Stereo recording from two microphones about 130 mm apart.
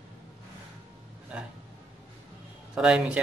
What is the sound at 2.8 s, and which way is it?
Speech, 5° right (ahead or behind).